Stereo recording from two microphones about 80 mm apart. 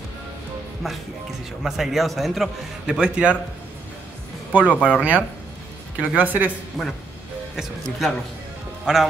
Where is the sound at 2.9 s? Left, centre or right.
Centre.